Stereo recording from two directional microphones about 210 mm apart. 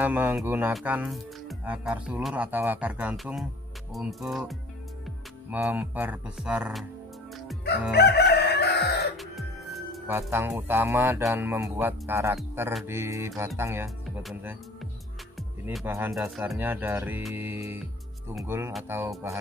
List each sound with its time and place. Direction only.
0.0 s speech: 10° right (ahead or behind)
7.9 s crowing: 50° left (ahead or behind)
9.1 s music: centre (ahead or behind)
10.1 s speech: 10° right (ahead or behind)
13.8 s speech: centre (ahead or behind)
15.6 s speech: 10° right (ahead or behind)